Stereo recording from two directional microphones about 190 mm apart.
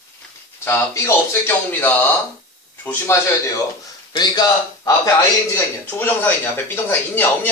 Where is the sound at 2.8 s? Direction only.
10° left (ahead or behind).